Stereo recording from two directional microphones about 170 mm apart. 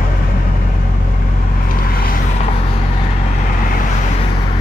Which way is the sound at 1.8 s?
60° left (ahead or behind).